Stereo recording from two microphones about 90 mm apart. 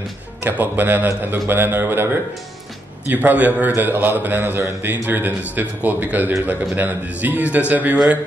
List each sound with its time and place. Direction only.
0.4 s a man's voice: 20° right (ahead or behind)
3.1 s a man's voice: 20° right (ahead or behind)